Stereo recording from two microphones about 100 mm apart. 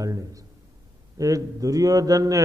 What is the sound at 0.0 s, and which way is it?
A man's voice, 35° right (ahead or behind).